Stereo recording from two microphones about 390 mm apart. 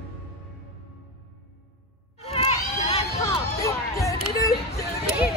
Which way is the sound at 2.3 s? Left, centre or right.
Centre.